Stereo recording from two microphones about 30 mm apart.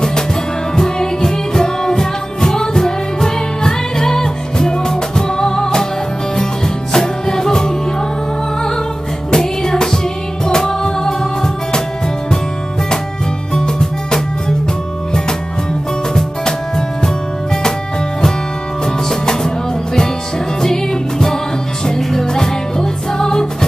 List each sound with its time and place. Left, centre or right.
0.7 s music: left
6.9 s music: left
9.3 s music: left
13.6 s music: left
16.2 s music: left
20.6 s music: centre